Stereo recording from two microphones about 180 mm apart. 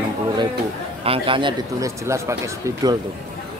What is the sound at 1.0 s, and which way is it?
Speech, 30° right (ahead or behind).